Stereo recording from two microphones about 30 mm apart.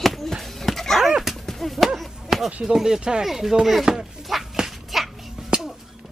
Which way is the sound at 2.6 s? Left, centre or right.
Centre.